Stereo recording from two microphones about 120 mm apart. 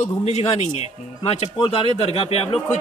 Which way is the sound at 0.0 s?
65° left (ahead or behind).